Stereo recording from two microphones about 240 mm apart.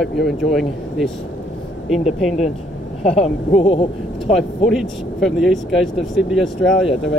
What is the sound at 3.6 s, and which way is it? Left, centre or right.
Speech, left.